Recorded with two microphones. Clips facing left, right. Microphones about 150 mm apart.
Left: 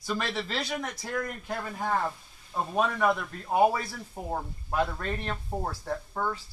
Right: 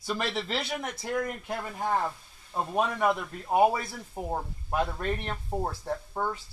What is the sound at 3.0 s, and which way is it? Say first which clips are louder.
A man's voice: even; 15° right (ahead or behind).